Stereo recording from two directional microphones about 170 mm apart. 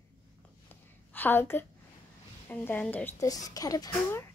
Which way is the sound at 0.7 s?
10° left (ahead or behind).